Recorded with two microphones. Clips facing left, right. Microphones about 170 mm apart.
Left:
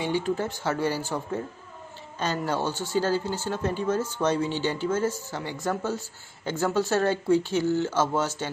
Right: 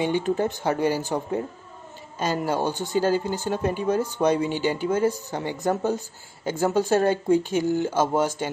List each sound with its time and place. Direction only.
0.0 s speech: 15° right (ahead or behind)